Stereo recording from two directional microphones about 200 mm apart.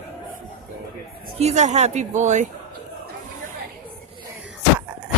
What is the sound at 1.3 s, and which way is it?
Speech, 35° right (ahead or behind).